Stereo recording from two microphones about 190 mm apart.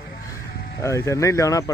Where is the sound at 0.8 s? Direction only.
15° left (ahead or behind).